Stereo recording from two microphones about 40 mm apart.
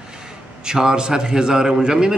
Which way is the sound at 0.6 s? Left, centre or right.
Centre.